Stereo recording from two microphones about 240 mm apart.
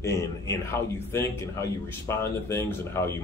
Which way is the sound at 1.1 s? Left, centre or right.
Centre.